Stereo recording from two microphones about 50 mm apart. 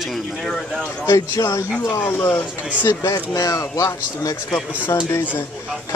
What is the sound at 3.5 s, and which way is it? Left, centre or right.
Speech, left.